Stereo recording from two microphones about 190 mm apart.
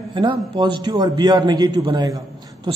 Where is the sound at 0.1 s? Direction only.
25° right (ahead or behind).